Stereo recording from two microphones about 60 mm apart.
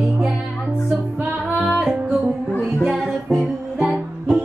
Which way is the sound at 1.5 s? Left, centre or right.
Right.